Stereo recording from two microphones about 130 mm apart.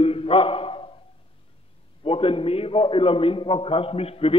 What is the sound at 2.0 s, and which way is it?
A man's voice, 45° left (ahead or behind).